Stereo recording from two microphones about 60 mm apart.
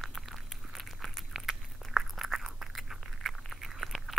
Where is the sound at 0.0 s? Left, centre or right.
Centre.